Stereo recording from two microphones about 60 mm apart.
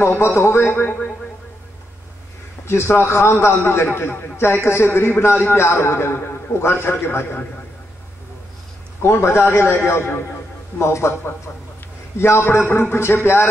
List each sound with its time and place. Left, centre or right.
0.2 s a man's voice: left
2.6 s a man's voice: left
9.0 s a man's voice: left